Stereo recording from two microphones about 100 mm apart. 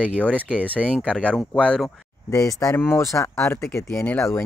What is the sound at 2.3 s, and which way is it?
Speech, 35° left (ahead or behind).